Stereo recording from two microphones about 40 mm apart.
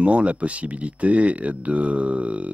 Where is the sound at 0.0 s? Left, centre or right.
Right.